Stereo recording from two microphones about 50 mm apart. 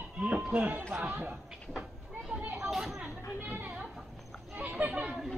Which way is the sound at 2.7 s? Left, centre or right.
Centre.